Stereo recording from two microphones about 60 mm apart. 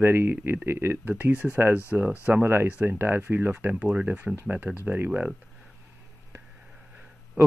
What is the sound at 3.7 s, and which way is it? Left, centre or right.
Speech, centre.